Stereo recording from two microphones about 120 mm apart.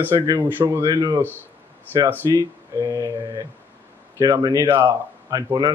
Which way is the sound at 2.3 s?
30° right (ahead or behind).